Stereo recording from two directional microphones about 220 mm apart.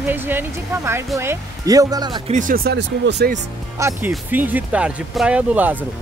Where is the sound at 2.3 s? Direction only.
40° right (ahead or behind).